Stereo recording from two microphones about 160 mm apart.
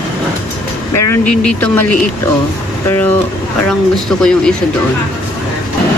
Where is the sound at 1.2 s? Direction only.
5° left (ahead or behind).